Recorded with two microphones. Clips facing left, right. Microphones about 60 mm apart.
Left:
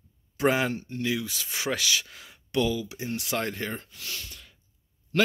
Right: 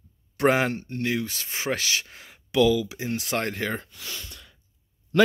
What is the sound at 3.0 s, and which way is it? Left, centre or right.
Speech, right.